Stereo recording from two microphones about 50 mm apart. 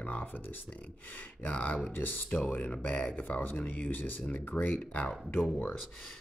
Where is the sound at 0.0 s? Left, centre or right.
Left.